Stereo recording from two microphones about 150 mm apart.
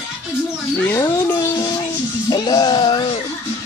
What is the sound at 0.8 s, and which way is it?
Speech, 15° left (ahead or behind).